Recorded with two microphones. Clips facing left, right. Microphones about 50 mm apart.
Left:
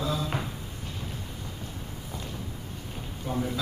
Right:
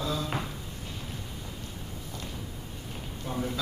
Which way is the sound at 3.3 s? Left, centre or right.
Centre.